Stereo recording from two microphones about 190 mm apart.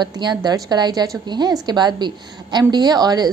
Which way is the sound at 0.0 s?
25° right (ahead or behind).